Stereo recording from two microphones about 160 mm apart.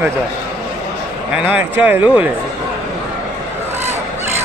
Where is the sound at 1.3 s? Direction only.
10° right (ahead or behind).